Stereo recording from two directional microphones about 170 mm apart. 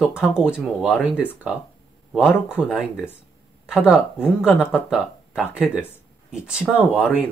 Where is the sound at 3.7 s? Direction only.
Centre (ahead or behind).